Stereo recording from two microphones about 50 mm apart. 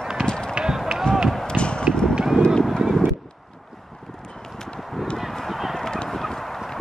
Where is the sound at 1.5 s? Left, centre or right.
Left.